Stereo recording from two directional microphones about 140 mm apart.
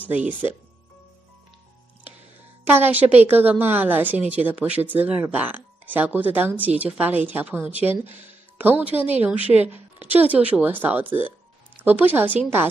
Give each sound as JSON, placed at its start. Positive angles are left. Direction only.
{"t": 0.0, "sound": "speech", "side_deg": -10}
{"t": 2.6, "sound": "speech", "side_deg": -15}